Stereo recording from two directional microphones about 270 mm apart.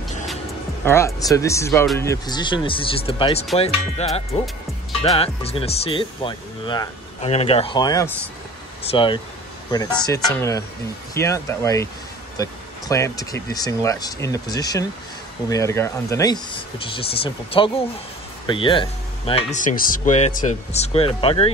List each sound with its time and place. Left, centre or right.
0.8 s speech: centre